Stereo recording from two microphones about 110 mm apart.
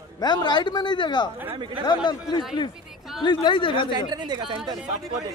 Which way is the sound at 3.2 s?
45° left (ahead or behind).